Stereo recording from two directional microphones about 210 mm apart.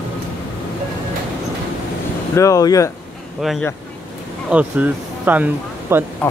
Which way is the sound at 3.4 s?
Centre (ahead or behind).